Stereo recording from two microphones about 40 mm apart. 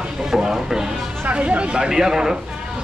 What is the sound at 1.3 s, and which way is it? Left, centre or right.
Speech, right.